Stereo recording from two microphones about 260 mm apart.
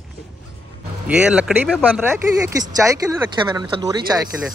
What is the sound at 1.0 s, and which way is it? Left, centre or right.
Speech, centre.